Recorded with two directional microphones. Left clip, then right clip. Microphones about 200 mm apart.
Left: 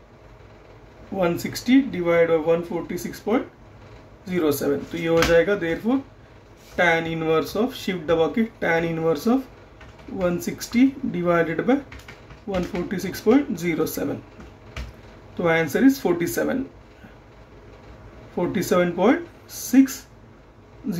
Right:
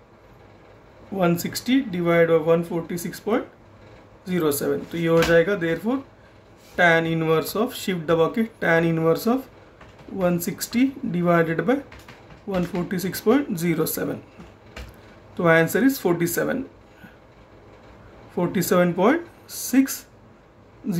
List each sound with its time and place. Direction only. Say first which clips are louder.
1.1 s speech: even; 20° right (ahead or behind)
15.3 s speech: right 3 dB; 20° right (ahead or behind)
18.3 s speech: even; 20° right (ahead or behind)